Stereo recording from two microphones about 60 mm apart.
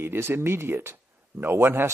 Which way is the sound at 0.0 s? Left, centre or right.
Right.